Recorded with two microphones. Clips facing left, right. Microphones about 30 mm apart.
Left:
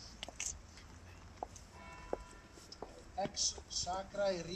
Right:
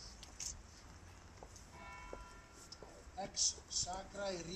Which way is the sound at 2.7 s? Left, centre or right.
Left.